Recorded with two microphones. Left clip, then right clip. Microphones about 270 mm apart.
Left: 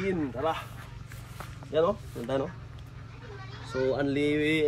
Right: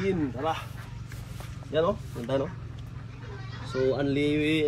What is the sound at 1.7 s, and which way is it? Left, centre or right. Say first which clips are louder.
Speech: even; centre.